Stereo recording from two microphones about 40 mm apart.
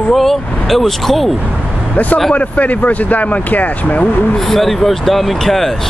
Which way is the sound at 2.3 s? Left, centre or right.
Left.